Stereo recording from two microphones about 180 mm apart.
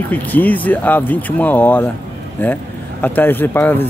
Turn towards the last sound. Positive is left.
turn(degrees=10)  # may be behind; listen again after turning